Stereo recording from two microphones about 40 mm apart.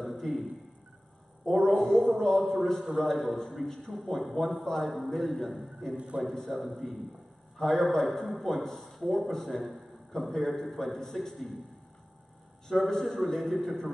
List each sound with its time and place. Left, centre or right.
0.0 s a sound: centre
1.4 s a man's voice: centre
12.6 s a man's voice: centre